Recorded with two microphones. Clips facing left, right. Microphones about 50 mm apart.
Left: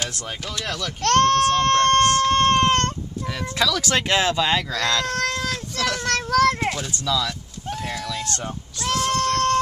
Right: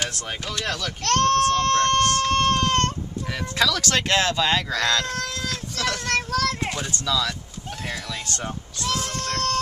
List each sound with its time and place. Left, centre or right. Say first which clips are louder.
0.0 s speech: right 1 dB; centre
1.0 s speech: left 2 dB; left
3.5 s speech: even; centre
4.6 s speech: even; centre
5.0 s cat: left 5 dB; left
6.0 s children playing: left 7 dB; left
6.6 s a sound: left 3 dB; centre
6.9 s speech: left 1 dB; centre
8.8 s a sound: left 6 dB; left